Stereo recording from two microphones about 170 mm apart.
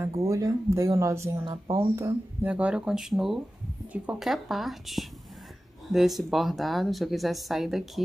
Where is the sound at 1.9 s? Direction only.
10° right (ahead or behind).